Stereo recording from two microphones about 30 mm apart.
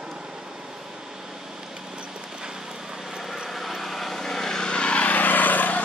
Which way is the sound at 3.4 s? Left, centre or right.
Centre.